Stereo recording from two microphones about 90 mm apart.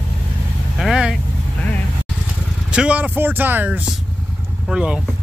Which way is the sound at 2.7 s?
15° right (ahead or behind).